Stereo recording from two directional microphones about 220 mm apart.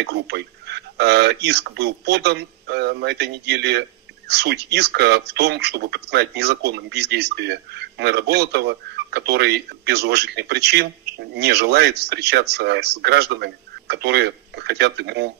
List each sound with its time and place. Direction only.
0.0 s speech: 50° right (ahead or behind)